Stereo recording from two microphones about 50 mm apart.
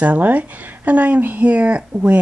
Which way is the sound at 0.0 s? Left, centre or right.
Right.